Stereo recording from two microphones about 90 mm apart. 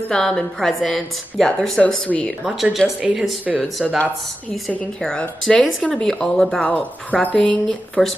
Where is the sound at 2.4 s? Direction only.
Centre (ahead or behind).